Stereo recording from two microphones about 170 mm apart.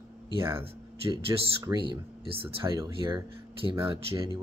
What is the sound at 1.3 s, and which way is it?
Speech, 20° right (ahead or behind).